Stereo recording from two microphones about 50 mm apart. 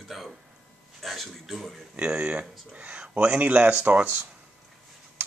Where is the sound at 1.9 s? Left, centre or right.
Right.